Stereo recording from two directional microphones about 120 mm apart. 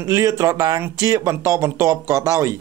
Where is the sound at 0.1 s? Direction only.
30° right (ahead or behind).